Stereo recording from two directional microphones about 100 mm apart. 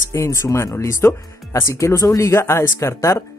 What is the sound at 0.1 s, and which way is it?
Speech, 30° left (ahead or behind).